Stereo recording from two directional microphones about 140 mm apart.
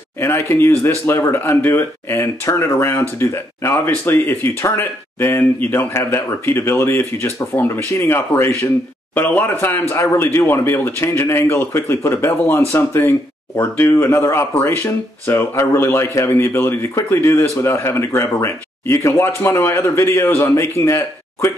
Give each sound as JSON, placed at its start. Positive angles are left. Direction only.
{"t": 0.2, "sound": "speech", "side_deg": 15}